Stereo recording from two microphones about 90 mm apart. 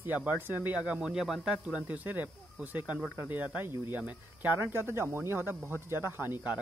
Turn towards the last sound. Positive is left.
turn(degrees=-20)  # may be behind; listen again after turning